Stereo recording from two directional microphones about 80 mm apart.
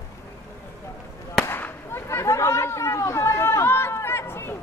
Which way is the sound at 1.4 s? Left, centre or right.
Left.